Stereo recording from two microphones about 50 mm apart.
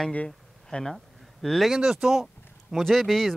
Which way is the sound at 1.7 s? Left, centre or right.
Centre.